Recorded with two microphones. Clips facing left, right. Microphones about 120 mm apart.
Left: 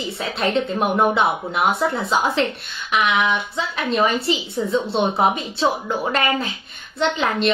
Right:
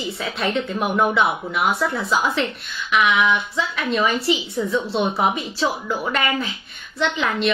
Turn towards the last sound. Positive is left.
turn(degrees=30)  # may be behind; listen again after turning